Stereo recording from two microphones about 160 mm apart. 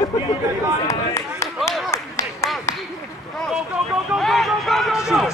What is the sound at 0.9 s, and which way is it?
Speech, 20° left (ahead or behind).